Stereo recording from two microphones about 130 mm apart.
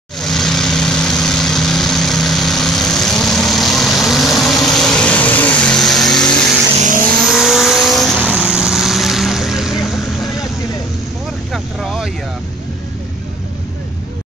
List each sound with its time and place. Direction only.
0.2 s vehicle: 5° left (ahead or behind)
6.8 s vehicle: 90° right
7.2 s vehicle: centre (ahead or behind)
11.5 s vehicle: centre (ahead or behind)